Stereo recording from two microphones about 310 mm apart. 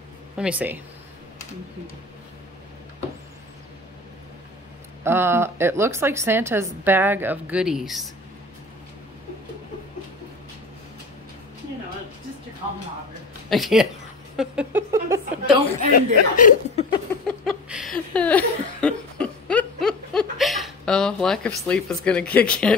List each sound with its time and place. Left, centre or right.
0.4 s speech: centre
5.0 s a woman's voice: centre
13.5 s speech: centre
14.3 s a sound: centre
15.9 s speech: left
17.5 s a sound: centre
18.1 s laughter: centre